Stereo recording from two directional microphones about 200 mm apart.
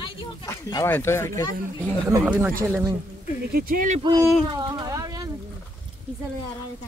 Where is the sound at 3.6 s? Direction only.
45° right (ahead or behind).